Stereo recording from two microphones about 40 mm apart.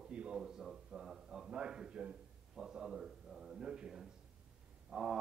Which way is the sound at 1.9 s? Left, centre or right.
Right.